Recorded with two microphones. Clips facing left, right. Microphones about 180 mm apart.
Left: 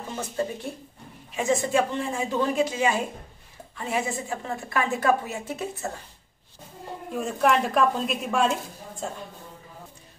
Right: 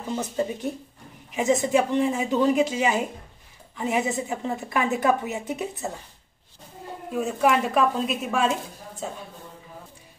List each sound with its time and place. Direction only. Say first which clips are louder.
0.1 s a woman's voice: right 3 dB; 20° right (ahead or behind)
7.1 s a woman's voice: right 1 dB; 5° right (ahead or behind)